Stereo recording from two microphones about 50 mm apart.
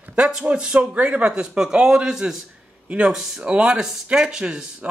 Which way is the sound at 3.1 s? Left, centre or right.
Centre.